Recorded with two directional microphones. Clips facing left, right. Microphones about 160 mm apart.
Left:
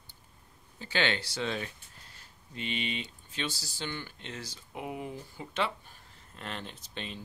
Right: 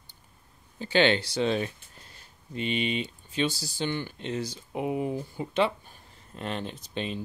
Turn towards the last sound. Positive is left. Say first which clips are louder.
# right 8 dB
turn(degrees=-15)  # may be behind; listen again after turning